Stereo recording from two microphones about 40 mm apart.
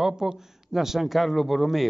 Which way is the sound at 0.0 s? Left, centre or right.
Centre.